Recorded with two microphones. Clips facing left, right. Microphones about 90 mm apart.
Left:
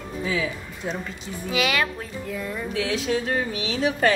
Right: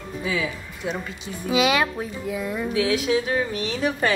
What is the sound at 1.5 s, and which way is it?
A woman's voice, 20° right (ahead or behind).